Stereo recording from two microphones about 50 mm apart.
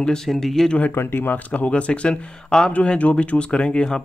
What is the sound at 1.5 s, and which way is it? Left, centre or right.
Speech, left.